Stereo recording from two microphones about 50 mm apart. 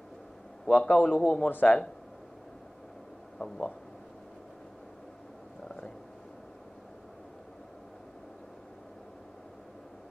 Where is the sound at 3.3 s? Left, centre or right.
Centre.